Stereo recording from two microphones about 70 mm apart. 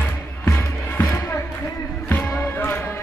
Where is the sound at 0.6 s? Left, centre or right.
Left.